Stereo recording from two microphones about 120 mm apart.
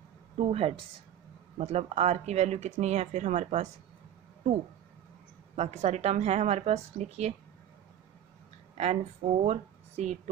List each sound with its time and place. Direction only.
0.4 s speech: 55° right (ahead or behind)
1.6 s speech: 70° right (ahead or behind)
5.6 s speech: 65° right (ahead or behind)
8.7 s speech: 65° right (ahead or behind)